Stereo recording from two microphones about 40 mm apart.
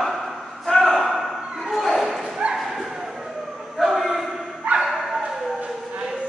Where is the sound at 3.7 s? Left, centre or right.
Centre.